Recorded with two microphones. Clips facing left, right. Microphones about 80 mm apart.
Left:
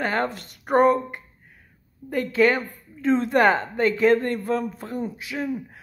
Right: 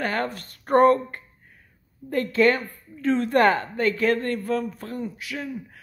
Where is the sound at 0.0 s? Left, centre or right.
Left.